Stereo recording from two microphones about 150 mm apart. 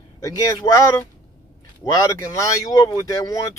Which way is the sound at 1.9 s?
25° left (ahead or behind).